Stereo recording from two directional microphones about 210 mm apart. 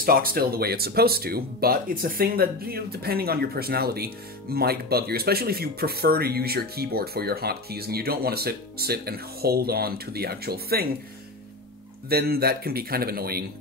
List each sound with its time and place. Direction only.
0.0 s speech: 45° right (ahead or behind)
12.1 s speech: 45° right (ahead or behind)